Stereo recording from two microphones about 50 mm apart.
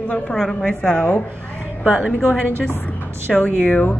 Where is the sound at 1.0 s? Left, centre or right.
Left.